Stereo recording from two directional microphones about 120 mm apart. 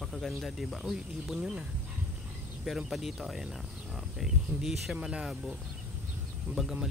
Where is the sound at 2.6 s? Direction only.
Centre (ahead or behind).